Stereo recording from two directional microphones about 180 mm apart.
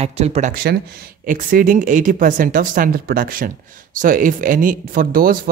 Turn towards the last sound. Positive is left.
turn(degrees=-55)  # may be behind; listen again after turning